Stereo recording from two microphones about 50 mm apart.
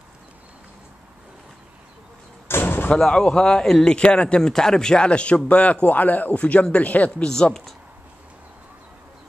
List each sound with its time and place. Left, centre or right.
2.6 s slam: left
3.1 s speech: centre
7.2 s speech: centre